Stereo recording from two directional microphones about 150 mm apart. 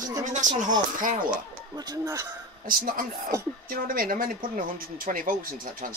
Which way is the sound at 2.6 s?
65° right (ahead or behind).